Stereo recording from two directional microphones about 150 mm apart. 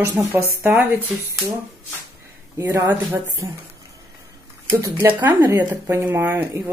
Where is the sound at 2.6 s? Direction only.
15° right (ahead or behind).